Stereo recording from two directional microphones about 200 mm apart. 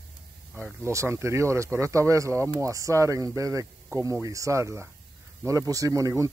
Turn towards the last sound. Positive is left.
turn(degrees=-15)  # may be behind; listen again after turning